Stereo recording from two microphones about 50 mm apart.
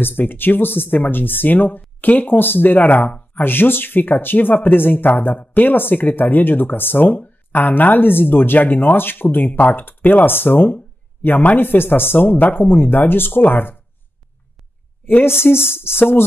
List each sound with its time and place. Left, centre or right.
0.0 s speech: left
15.0 s speech: left